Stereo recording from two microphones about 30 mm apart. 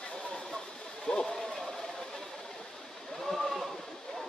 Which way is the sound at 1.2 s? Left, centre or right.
Centre.